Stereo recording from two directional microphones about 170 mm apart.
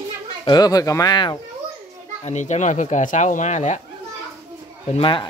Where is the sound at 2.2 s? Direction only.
45° left (ahead or behind).